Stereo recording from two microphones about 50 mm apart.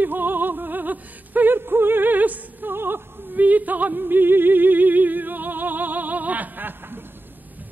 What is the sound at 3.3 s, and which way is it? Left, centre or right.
Music, right.